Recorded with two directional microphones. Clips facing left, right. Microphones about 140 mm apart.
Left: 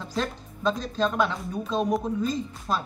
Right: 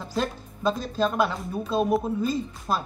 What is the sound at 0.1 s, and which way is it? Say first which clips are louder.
Speech: right 2 dB; 5° right (ahead or behind).